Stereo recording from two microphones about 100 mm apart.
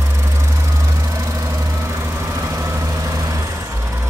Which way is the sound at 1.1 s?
30° right (ahead or behind).